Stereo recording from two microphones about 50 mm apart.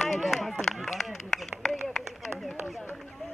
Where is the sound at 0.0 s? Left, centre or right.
Centre.